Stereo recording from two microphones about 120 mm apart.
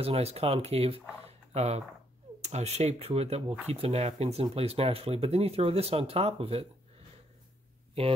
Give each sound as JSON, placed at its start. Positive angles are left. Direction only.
{"t": 0.0, "sound": "speech", "side_deg": -55}
{"t": 1.2, "sound": "a sound", "side_deg": -60}
{"t": 2.4, "sound": "speech", "side_deg": -65}
{"t": 8.0, "sound": "speech", "side_deg": -55}